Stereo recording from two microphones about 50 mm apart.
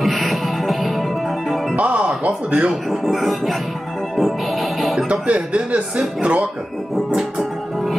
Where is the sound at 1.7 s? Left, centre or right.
Right.